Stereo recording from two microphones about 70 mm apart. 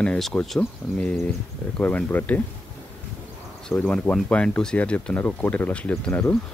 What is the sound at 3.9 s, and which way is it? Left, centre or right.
Speech, centre.